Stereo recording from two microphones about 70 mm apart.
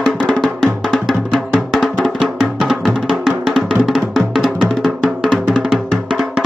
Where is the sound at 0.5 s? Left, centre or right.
Centre.